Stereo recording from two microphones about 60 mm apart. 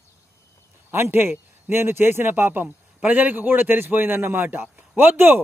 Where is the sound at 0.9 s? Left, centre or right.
Right.